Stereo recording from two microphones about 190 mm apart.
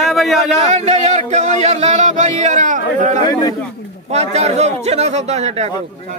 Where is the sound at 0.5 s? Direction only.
35° right (ahead or behind).